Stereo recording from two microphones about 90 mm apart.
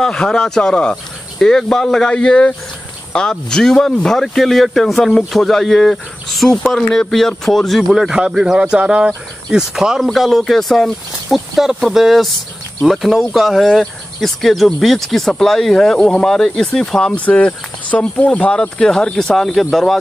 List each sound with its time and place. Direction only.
0.0 s speech: 5° left (ahead or behind)